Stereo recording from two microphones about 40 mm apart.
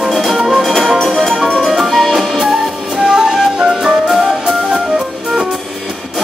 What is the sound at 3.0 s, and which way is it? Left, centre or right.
Music, centre.